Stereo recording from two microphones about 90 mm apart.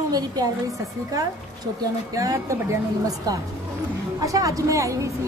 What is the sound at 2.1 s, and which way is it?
A woman's voice, 35° right (ahead or behind).